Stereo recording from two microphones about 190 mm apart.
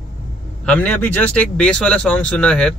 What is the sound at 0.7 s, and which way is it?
Speech, 5° left (ahead or behind).